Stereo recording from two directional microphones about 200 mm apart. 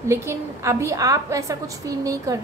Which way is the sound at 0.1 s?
15° right (ahead or behind).